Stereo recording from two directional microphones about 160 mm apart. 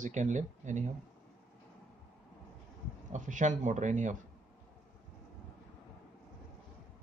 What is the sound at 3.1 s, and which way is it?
Speech, 50° right (ahead or behind).